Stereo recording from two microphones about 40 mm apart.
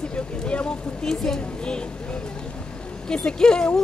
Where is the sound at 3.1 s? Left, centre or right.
Left.